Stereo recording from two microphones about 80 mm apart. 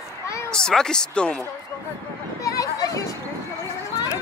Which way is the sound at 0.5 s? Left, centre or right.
Centre.